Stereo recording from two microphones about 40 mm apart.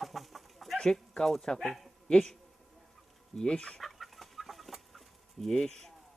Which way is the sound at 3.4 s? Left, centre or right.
Left.